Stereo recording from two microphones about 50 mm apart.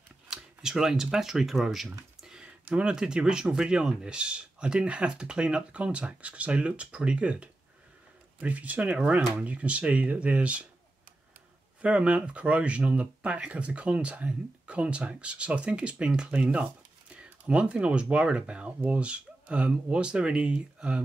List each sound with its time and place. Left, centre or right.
0.3 s speech: centre
2.1 s a sound: centre
2.4 s speech: centre
11.8 s speech: right
17.1 s a sound: right
18.1 s speech: right